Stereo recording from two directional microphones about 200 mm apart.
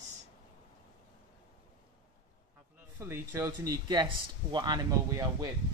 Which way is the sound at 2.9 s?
15° right (ahead or behind).